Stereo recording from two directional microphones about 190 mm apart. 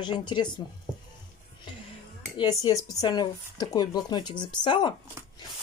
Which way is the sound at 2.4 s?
20° left (ahead or behind).